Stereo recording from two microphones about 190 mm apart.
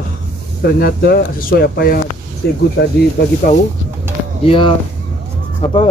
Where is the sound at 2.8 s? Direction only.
75° left (ahead or behind).